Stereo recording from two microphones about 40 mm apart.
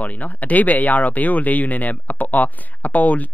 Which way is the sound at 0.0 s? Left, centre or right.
Left.